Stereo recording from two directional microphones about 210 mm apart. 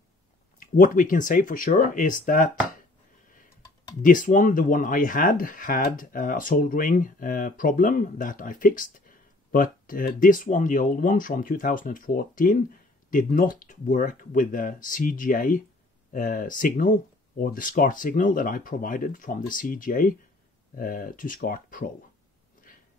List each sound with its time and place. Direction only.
0.6 s speech: 40° left (ahead or behind)
4.0 s speech: 40° left (ahead or behind)